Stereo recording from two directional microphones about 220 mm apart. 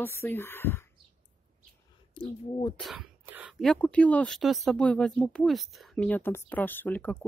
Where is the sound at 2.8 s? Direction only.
Centre (ahead or behind).